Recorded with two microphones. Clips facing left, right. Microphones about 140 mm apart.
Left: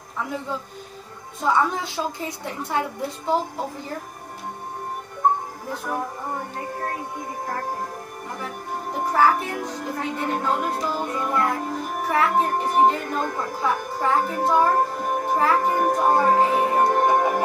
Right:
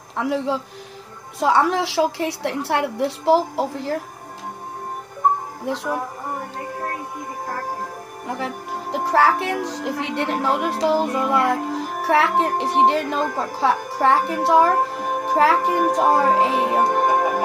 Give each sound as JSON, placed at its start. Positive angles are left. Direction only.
{"t": 0.1, "sound": "a man's voice", "side_deg": -80}
{"t": 5.7, "sound": "speech", "side_deg": -85}
{"t": 8.4, "sound": "speech", "side_deg": -80}